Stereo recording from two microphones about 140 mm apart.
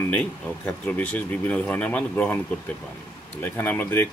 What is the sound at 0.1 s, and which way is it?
Speech, 10° left (ahead or behind).